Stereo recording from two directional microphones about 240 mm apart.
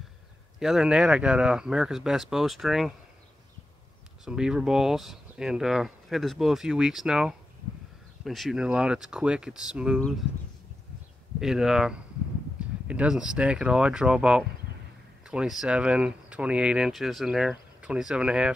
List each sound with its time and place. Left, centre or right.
0.6 s speech: centre
4.2 s speech: centre
11.3 s speech: centre